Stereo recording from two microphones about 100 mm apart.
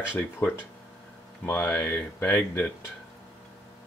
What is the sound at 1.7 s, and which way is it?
Speech, 15° left (ahead or behind).